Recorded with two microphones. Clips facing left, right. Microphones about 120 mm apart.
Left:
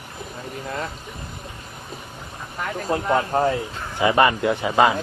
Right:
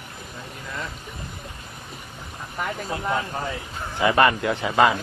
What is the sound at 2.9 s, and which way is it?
Speech, 50° left (ahead or behind).